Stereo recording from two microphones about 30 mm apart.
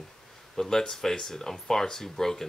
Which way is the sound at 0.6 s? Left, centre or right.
Centre.